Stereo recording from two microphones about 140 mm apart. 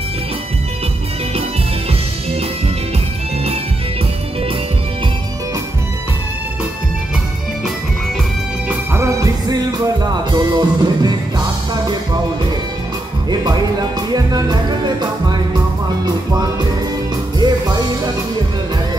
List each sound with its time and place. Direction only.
8.6 s music: 20° right (ahead or behind)
13.3 s music: 30° right (ahead or behind)
17.4 s music: 30° right (ahead or behind)